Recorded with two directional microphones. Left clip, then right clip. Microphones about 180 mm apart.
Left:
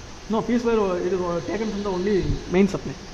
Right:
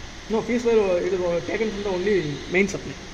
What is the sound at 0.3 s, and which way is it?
Speech, 50° left (ahead or behind).